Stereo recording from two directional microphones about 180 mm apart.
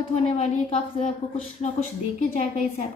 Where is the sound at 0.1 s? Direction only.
35° left (ahead or behind).